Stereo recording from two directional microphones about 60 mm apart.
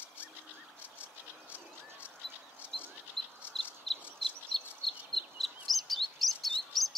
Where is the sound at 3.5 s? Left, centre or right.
Centre.